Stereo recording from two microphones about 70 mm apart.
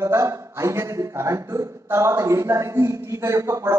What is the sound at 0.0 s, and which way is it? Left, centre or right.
A man's voice, right.